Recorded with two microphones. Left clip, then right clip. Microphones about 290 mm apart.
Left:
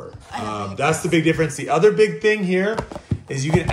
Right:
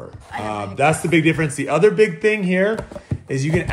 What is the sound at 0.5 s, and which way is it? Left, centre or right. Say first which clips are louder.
Speech: right 3 dB; right.